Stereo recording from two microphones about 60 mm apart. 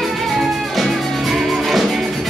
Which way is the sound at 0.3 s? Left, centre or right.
Centre.